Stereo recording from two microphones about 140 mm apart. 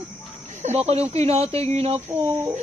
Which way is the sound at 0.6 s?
50° right (ahead or behind).